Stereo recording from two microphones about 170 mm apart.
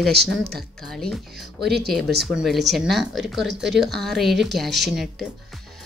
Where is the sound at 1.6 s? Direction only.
75° right (ahead or behind).